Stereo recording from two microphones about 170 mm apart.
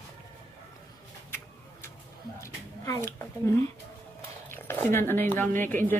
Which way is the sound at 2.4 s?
15° left (ahead or behind).